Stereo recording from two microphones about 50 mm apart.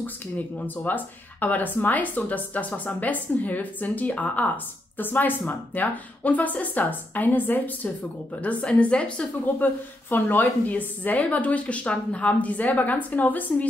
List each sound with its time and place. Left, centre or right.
0.6 s a woman's voice: left
9.6 s a woman's voice: left